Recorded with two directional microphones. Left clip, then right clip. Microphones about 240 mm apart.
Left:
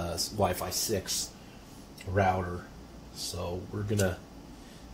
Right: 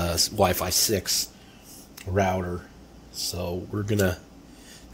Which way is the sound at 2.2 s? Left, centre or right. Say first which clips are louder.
Right 3 dB; right.